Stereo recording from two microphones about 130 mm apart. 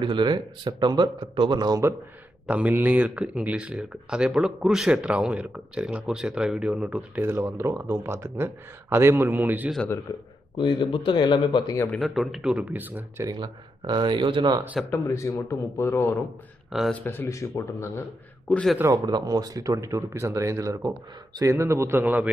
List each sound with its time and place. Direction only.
0.0 s speech: 35° right (ahead or behind)
2.4 s speech: 10° right (ahead or behind)
10.1 s speech: 25° left (ahead or behind)
10.6 s speech: 40° left (ahead or behind)
12.0 s speech: centre (ahead or behind)
13.3 s speech: 35° right (ahead or behind)
14.9 s speech: 20° left (ahead or behind)
18.5 s a man's voice: 5° left (ahead or behind)
18.9 s speech: 30° right (ahead or behind)